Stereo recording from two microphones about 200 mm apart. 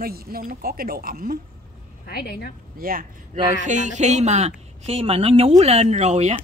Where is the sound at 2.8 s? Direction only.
45° right (ahead or behind).